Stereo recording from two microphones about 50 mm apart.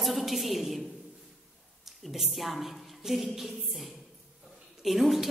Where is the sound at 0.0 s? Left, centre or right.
Centre.